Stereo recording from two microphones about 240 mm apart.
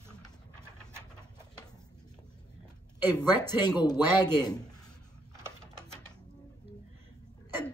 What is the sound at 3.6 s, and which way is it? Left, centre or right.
A man's voice, centre.